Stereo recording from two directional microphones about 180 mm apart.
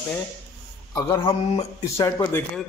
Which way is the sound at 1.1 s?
20° left (ahead or behind).